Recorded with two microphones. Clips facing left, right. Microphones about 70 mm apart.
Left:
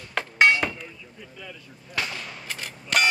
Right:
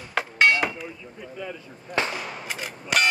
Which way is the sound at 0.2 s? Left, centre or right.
Centre.